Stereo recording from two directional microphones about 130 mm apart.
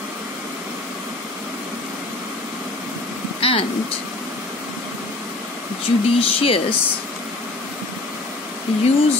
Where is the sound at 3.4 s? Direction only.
45° left (ahead or behind).